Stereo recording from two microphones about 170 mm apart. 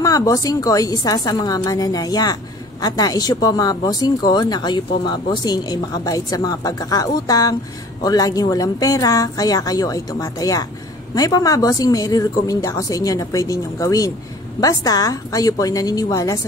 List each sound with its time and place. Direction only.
0.0 s a woman's voice: 20° left (ahead or behind)